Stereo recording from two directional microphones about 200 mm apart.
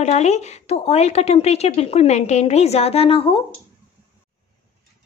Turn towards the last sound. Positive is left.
turn(degrees=30)  # may be behind; listen again after turning